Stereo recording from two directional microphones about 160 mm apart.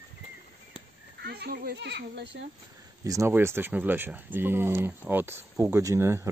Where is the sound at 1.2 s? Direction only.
80° right.